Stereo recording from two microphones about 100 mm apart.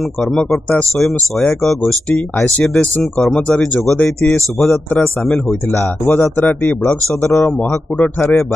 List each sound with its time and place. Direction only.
0.2 s speech: 5° left (ahead or behind)
5.8 s speech: 20° left (ahead or behind)